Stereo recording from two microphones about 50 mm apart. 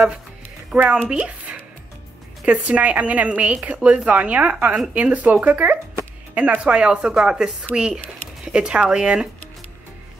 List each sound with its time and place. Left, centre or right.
0.8 s a woman's voice: right